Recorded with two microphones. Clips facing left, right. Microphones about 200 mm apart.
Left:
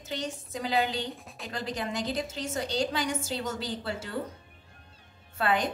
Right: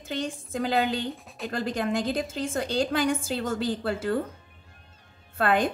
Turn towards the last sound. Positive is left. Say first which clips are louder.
# right 4 dB
turn(degrees=-50)  # may be behind; listen again after turning